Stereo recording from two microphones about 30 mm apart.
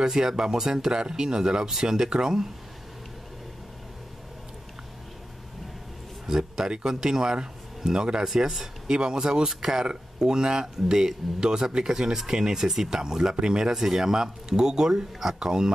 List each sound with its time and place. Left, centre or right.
0.0 s speech: centre
6.2 s speech: centre
9.8 s speech: right
11.3 s speech: right
13.7 s speech: centre